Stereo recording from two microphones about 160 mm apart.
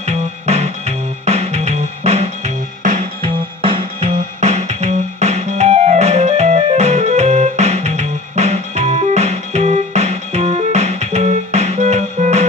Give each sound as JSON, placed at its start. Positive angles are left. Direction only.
{"t": 0.0, "sound": "music", "side_deg": -40}
{"t": 3.2, "sound": "music", "side_deg": -35}
{"t": 4.1, "sound": "music", "side_deg": -45}